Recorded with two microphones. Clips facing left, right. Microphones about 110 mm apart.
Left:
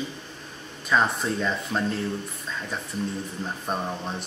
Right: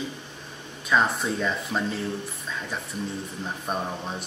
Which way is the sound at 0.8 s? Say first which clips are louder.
Even; centre (ahead or behind).